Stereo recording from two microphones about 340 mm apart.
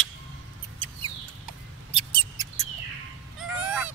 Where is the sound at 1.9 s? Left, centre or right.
Centre.